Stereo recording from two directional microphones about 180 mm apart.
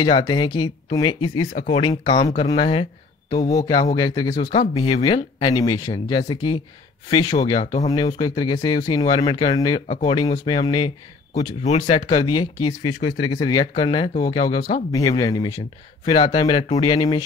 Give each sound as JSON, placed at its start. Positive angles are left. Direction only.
{"t": 0.0, "sound": "speech", "side_deg": 25}
{"t": 3.3, "sound": "speech", "side_deg": 20}
{"t": 7.6, "sound": "speech", "side_deg": 40}
{"t": 7.9, "sound": "speech", "side_deg": 20}
{"t": 11.3, "sound": "speech", "side_deg": 40}